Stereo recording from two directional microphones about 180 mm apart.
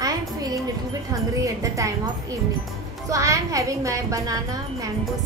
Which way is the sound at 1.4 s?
20° right (ahead or behind).